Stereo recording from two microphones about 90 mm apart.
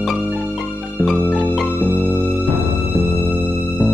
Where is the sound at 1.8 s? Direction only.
20° right (ahead or behind).